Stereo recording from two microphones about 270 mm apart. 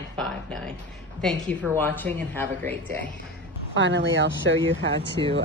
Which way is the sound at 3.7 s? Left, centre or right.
Right.